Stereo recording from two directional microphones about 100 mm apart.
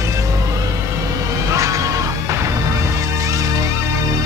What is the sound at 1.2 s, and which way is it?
Music, 35° right (ahead or behind).